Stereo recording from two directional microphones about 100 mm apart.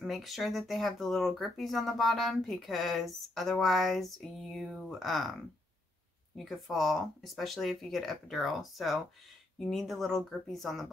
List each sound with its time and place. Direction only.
0.0 s speech: centre (ahead or behind)
6.3 s speech: centre (ahead or behind)